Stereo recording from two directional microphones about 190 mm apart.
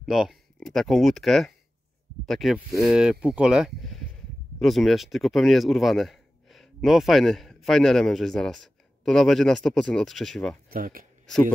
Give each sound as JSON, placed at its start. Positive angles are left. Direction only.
{"t": 0.0, "sound": "speech", "side_deg": 0}
{"t": 10.7, "sound": "speech", "side_deg": -45}